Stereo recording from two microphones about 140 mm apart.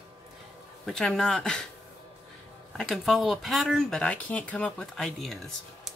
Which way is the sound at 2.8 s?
Centre (ahead or behind).